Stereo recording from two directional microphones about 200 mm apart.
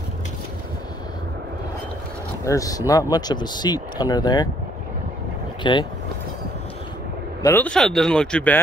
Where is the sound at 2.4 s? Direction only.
15° left (ahead or behind).